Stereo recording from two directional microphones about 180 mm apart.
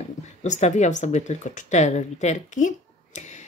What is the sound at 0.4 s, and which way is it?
Speech, 40° left (ahead or behind).